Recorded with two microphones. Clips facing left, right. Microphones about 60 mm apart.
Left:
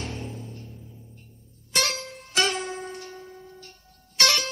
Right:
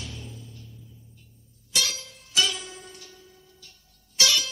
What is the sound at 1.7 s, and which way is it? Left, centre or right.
Music, left.